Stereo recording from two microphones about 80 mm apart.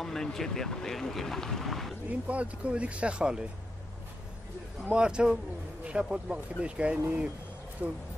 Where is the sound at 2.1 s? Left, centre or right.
Centre.